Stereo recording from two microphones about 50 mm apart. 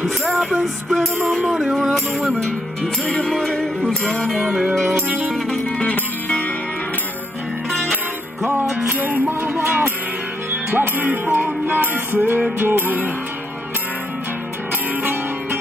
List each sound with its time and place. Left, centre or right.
0.0 s music: centre
5.8 s music: left
9.0 s music: right
9.4 s music: right
10.7 s music: right